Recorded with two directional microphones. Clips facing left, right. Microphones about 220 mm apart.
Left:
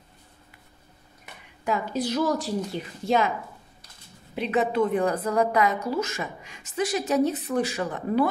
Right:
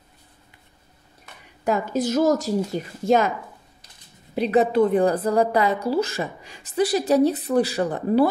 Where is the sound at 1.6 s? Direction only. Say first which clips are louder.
Right 4 dB; 45° right (ahead or behind).